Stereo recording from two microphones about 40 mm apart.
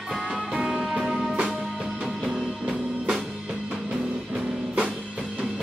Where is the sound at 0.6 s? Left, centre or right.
Centre.